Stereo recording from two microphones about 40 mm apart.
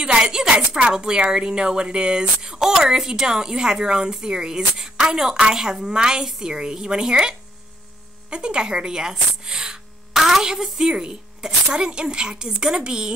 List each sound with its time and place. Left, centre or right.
0.0 s a woman's voice: right